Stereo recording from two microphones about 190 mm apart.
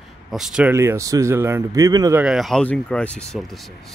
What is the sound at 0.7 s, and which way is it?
Speech, 15° right (ahead or behind).